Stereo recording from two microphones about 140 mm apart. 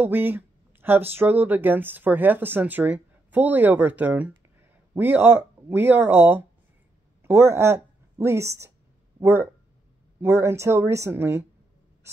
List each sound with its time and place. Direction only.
0.0 s a woman's voice: 15° right (ahead or behind)